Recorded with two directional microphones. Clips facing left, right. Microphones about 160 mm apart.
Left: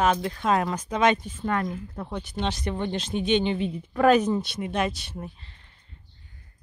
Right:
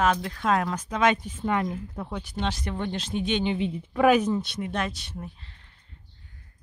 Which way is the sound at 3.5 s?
15° right (ahead or behind).